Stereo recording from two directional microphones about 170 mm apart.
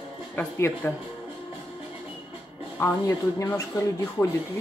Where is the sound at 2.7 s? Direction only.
15° left (ahead or behind).